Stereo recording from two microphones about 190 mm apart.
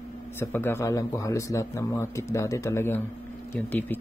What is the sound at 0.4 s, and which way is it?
Speech, 10° left (ahead or behind).